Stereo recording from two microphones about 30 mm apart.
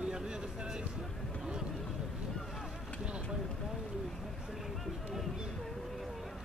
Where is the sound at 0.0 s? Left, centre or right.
Right.